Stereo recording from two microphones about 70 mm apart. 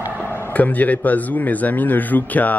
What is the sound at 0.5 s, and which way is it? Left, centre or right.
A man's voice, left.